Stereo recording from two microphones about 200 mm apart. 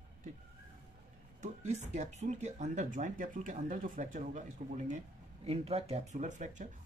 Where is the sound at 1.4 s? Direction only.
35° right (ahead or behind).